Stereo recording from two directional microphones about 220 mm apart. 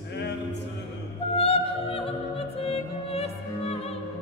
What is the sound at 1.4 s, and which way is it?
Music, 25° left (ahead or behind).